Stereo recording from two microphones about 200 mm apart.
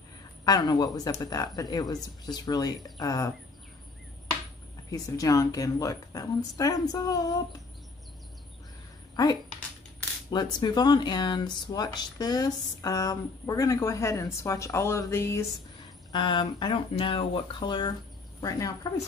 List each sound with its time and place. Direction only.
0.5 s speech: 20° left (ahead or behind)
4.9 s speech: 15° left (ahead or behind)
9.1 s speech: 20° left (ahead or behind)